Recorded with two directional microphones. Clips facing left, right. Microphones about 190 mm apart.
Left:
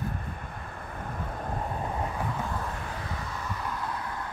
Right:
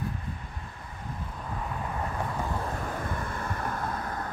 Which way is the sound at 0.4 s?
55° left (ahead or behind).